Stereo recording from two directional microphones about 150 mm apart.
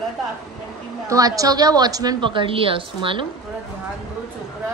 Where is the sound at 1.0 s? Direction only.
20° right (ahead or behind).